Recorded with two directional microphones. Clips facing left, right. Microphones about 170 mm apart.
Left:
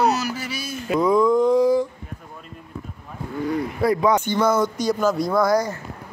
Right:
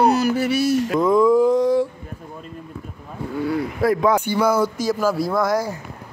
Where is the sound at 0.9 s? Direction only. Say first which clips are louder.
Left 1 dB; centre (ahead or behind).